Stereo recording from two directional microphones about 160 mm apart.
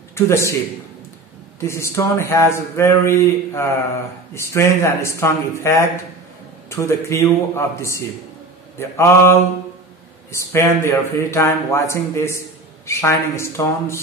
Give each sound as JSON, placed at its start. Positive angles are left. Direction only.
{"t": 0.1, "sound": "a man's voice", "side_deg": 15}
{"t": 1.6, "sound": "speech", "side_deg": 15}